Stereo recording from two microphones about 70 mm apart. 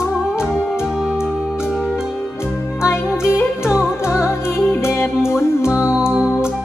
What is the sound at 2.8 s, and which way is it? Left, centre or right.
Music, left.